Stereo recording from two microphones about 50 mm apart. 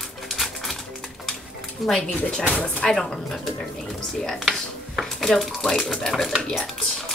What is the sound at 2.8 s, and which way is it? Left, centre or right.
Speech, centre.